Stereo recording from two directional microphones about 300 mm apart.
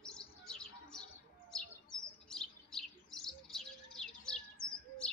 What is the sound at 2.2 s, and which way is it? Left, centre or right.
Bird, centre.